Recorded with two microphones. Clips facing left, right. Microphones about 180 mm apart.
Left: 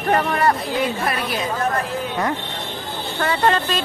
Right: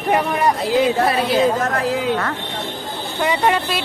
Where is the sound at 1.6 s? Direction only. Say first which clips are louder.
Right 3 dB; 90° right.